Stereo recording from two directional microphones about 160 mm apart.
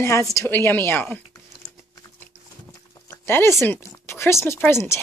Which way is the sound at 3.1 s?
15° left (ahead or behind).